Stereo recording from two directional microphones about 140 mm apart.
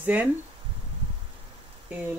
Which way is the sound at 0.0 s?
10° right (ahead or behind).